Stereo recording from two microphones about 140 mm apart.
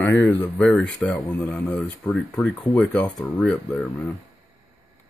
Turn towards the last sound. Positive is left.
turn(degrees=5)  # may be behind; listen again after turning